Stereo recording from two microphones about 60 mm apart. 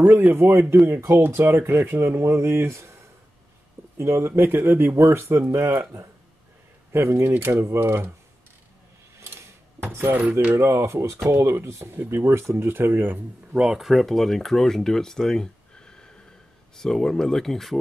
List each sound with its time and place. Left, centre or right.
0.3 s speech: right
4.0 s speech: right
4.4 s speech: right
6.9 s speech: right
9.8 s speech: right
10.5 s speech: right
11.2 s speech: right
12.5 s speech: right
13.5 s speech: centre
13.7 s speech: centre